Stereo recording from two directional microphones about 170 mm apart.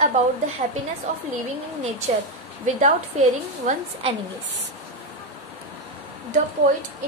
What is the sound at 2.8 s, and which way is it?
A woman's voice, 45° right (ahead or behind).